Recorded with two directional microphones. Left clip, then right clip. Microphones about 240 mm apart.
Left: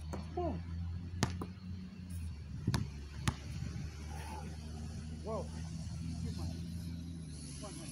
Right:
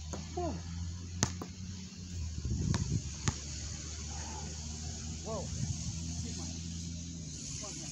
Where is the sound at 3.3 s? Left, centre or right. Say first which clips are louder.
Right 2 dB; left.